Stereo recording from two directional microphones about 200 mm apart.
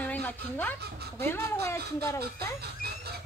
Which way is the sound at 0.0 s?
5° left (ahead or behind).